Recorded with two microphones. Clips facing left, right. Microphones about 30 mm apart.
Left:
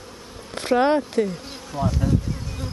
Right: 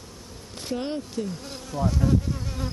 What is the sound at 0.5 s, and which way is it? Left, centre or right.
Speech, left.